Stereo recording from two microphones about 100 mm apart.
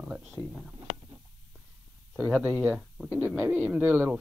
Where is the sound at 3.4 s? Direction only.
25° right (ahead or behind).